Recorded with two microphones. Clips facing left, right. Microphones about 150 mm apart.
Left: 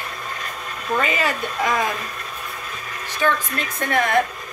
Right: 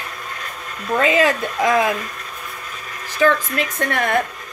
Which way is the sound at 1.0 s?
90° right.